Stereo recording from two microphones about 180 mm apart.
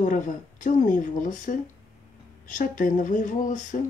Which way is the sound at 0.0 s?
45° left (ahead or behind).